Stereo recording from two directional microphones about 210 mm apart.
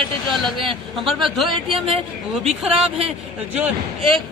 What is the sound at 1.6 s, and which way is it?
Speech, 25° right (ahead or behind).